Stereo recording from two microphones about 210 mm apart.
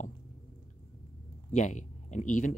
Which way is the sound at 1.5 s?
35° left (ahead or behind).